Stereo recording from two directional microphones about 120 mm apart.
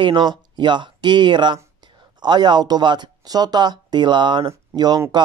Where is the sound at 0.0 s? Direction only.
40° right (ahead or behind).